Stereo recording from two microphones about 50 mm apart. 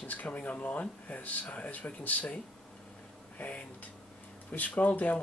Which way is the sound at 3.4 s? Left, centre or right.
Left.